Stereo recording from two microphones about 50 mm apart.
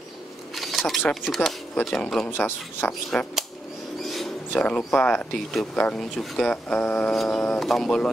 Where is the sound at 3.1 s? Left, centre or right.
Left.